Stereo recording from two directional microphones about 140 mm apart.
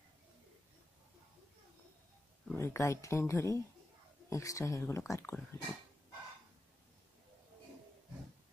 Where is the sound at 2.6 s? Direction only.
20° left (ahead or behind).